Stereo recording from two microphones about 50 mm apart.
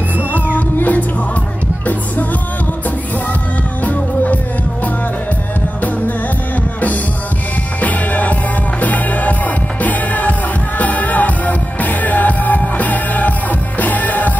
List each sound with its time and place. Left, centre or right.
0.6 s music: left
3.8 s music: left
7.8 s music: left